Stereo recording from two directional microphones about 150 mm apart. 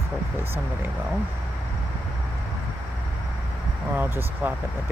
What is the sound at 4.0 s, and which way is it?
Speech, 15° right (ahead or behind).